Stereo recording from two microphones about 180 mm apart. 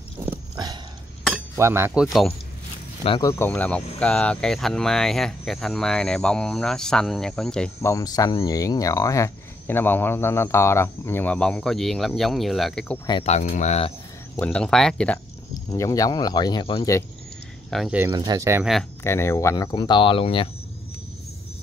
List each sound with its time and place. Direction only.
1.5 s speech: 15° right (ahead or behind)
3.2 s speech: 15° left (ahead or behind)
7.8 s speech: 20° left (ahead or behind)
13.2 s speech: 40° left (ahead or behind)
14.3 s speech: 5° left (ahead or behind)
15.7 s speech: 20° left (ahead or behind)
17.6 s speech: centre (ahead or behind)
17.9 s speech: 15° right (ahead or behind)
18.6 s speech: centre (ahead or behind)
19.0 s speech: 15° left (ahead or behind)